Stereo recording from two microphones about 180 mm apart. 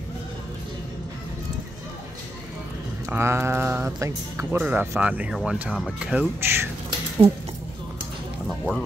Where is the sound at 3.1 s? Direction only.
15° right (ahead or behind).